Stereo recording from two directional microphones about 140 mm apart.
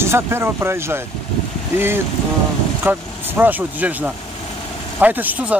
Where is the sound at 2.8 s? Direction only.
15° right (ahead or behind).